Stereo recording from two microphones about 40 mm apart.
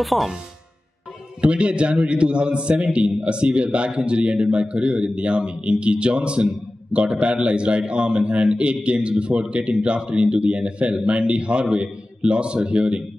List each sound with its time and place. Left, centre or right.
0.0 s speech: centre
1.4 s a man's voice: right